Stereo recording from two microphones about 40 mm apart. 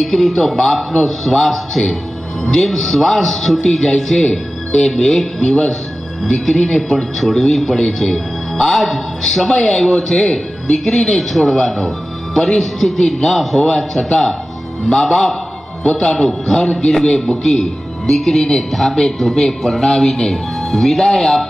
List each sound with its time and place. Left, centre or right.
0.0 s a man's voice: centre
11.1 s speech: centre
15.8 s a man's voice: left
16.1 s speech: centre